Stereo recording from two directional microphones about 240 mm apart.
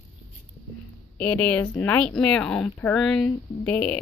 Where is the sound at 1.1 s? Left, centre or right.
Centre.